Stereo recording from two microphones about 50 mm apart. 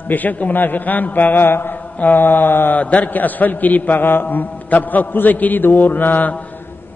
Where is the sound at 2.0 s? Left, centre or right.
Left.